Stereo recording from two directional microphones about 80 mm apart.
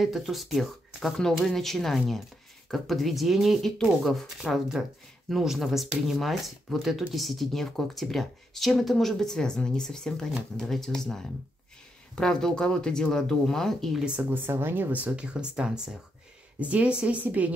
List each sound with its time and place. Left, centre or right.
0.0 s speech: centre
14.3 s speech: right